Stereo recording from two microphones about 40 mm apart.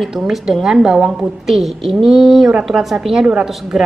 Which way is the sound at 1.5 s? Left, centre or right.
Centre.